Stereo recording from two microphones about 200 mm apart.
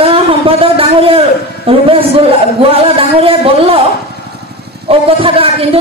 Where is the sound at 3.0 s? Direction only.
30° right (ahead or behind).